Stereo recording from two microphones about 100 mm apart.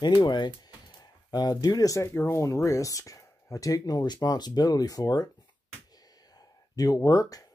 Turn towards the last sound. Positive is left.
turn(degrees=35)  # may be behind; listen again after turning